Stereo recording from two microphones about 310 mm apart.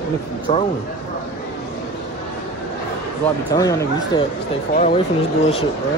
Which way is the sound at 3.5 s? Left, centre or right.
Centre.